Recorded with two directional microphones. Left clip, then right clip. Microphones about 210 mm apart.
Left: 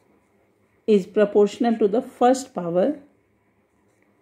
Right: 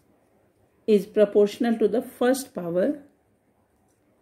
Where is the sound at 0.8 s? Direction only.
15° left (ahead or behind).